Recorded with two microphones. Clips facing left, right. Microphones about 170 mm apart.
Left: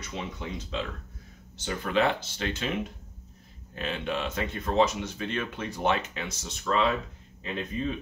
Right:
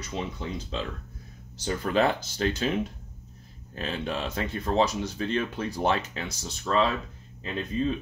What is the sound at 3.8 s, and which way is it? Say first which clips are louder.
Speech: even; 35° right (ahead or behind).